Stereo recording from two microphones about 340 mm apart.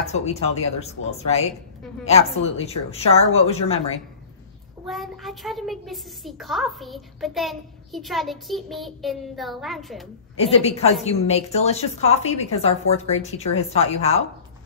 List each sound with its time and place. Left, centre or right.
0.1 s a woman's voice: centre
4.8 s a child's voice: centre
10.3 s a woman's voice: centre